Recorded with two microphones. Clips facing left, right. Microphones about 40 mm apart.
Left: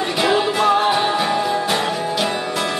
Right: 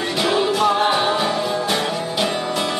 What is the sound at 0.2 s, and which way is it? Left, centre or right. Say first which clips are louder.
Music: left 1 dB; centre.